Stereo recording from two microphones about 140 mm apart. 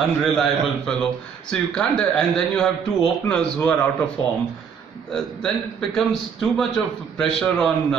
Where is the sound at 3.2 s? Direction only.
15° left (ahead or behind).